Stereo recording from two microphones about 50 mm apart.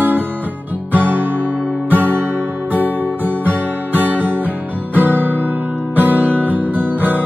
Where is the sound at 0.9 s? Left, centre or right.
Right.